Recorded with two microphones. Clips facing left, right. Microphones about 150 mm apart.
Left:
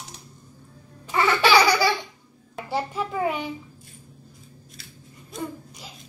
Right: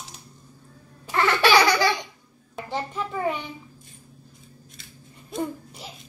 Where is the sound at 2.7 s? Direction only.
10° left (ahead or behind).